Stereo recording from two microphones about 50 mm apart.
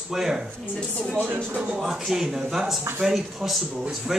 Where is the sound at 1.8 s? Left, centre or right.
Centre.